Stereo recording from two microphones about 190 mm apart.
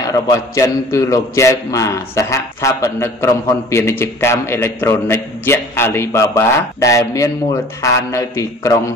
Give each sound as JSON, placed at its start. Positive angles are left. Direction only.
{"t": 0.1, "sound": "a man's voice", "side_deg": 20}